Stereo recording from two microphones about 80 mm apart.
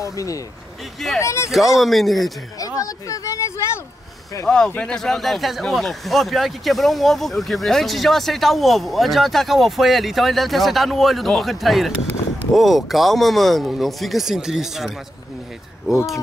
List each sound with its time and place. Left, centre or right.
0.0 s speech: left
1.5 s speech: centre
2.6 s speech: left
4.5 s speech: centre